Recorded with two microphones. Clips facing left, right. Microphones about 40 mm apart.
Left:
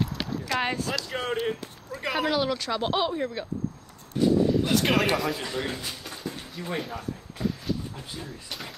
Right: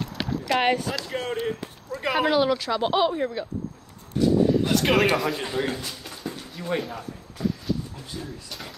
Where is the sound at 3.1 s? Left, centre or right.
Centre.